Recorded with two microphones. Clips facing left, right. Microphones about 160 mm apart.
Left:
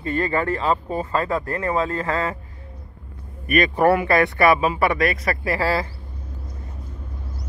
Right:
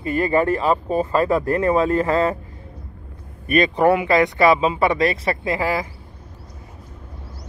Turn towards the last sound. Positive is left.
turn(degrees=-15)  # may be behind; listen again after turning